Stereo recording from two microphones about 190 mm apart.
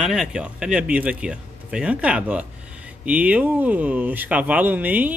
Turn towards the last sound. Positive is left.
turn(degrees=-10)  # may be behind; listen again after turning